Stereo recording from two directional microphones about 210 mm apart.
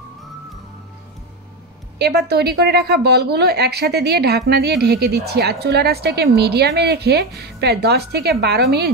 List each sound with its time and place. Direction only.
2.0 s a woman's voice: 50° right (ahead or behind)